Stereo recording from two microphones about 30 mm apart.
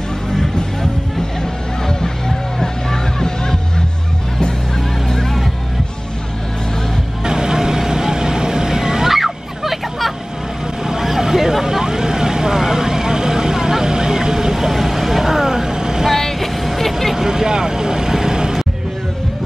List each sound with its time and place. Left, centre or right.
1.9 s music: centre
4.4 s honk: left
7.2 s vehicle: right
9.1 s fowl: centre
10.8 s vehicle: right
16.1 s vehicle: centre
17.1 s vehicle: centre